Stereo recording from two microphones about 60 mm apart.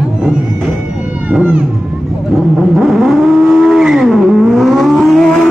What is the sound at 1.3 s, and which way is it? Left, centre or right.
Speech, right.